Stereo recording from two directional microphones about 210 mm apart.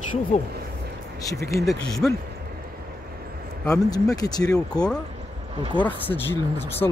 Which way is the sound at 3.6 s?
15° left (ahead or behind).